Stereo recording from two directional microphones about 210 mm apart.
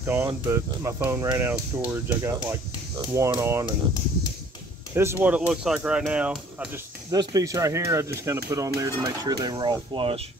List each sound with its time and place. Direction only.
0.0 s speech: 10° right (ahead or behind)
4.9 s speech: 10° right (ahead or behind)
7.1 s speech: 15° right (ahead or behind)